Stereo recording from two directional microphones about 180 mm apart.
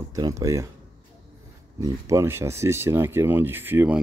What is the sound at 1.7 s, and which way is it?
Speech, 20° right (ahead or behind).